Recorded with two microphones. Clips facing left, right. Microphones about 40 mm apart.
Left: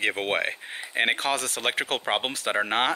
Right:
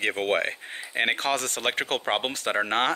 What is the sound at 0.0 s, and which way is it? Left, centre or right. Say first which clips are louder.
Speech: right 1 dB; centre.